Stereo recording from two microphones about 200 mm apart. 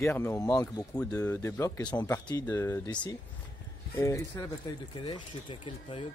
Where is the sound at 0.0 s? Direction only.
15° left (ahead or behind).